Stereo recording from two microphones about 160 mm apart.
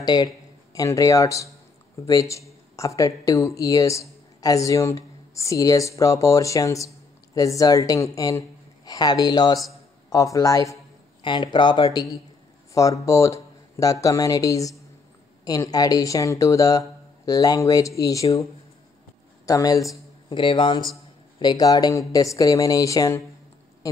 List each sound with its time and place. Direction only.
0.0 s speech: 25° left (ahead or behind)
19.4 s a man's voice: 20° left (ahead or behind)